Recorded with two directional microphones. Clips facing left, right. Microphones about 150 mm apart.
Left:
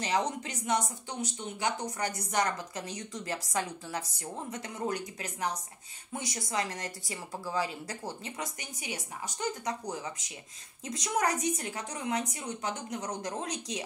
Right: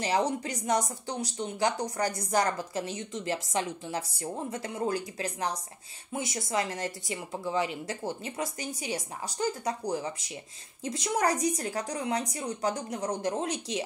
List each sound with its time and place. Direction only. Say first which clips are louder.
0.0 s speech: right 3 dB; 30° right (ahead or behind)